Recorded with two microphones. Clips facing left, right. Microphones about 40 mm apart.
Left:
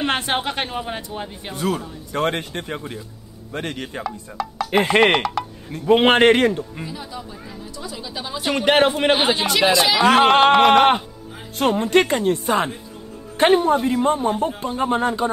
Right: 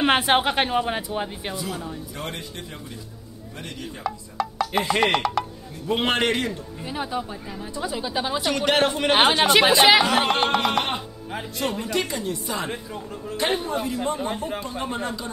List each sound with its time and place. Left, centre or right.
0.0 s speech: centre
1.5 s a woman's voice: left
4.0 s speech: centre
4.6 s a man's voice: left
5.2 s a sound: centre
5.9 s a man's voice: left
6.9 s speech: right
8.4 s speech: left
9.4 s speech: right
10.0 s a woman's voice: left
13.7 s a man's voice: left